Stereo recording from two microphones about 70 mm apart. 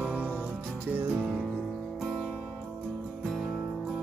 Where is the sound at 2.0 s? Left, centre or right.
Centre.